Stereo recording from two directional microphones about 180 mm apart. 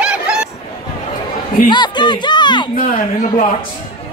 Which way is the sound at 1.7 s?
25° left (ahead or behind).